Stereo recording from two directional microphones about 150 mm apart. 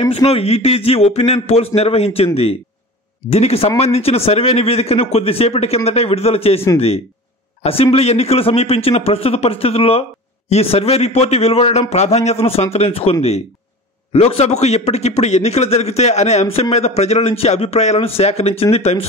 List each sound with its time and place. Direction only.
0.0 s a man's voice: 40° left (ahead or behind)
7.6 s a man's voice: 40° left (ahead or behind)